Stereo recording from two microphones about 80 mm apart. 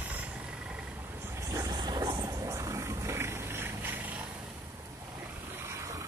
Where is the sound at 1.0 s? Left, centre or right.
Right.